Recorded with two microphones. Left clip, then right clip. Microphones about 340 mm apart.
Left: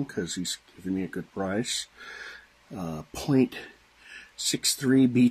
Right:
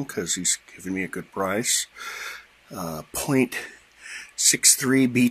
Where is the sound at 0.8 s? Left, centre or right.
Right.